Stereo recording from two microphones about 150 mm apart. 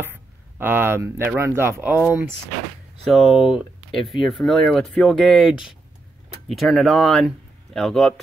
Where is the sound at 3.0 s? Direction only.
Centre (ahead or behind).